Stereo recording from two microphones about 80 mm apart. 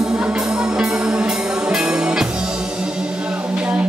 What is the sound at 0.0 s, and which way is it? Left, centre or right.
Music, centre.